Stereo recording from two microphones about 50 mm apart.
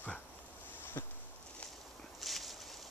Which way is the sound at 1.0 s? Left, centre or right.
Left.